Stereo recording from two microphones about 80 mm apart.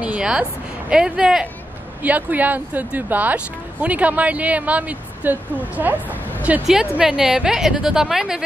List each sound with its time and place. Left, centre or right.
0.0 s speech: centre
6.7 s speech: centre